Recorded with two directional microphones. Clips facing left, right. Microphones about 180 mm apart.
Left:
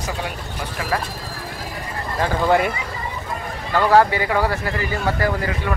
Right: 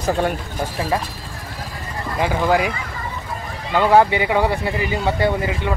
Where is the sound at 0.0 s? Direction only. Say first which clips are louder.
Right 8 dB; 45° right (ahead or behind).